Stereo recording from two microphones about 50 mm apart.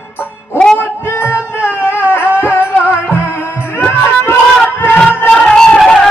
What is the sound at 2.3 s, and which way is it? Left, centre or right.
Music, left.